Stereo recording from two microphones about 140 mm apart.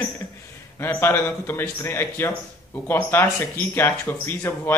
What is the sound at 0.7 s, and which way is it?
A man's voice, 15° left (ahead or behind).